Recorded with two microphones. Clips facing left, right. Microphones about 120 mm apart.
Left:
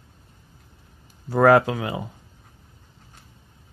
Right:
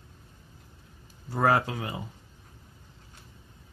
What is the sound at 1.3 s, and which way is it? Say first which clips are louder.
Speech: left 9 dB; 90° left.